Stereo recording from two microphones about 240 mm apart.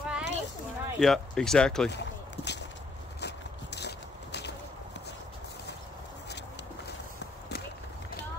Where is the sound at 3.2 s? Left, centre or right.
Left.